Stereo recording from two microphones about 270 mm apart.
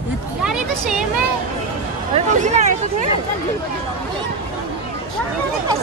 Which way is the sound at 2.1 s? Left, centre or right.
Right.